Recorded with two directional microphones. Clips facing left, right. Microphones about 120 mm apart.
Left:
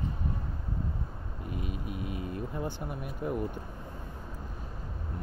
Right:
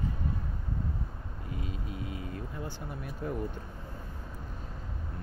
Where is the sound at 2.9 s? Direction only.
15° left (ahead or behind).